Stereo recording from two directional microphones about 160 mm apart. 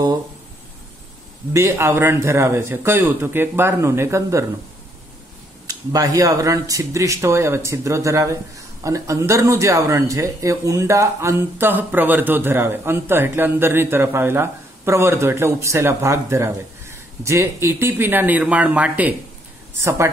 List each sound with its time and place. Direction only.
1.5 s speech: 15° right (ahead or behind)
5.7 s speech: 20° right (ahead or behind)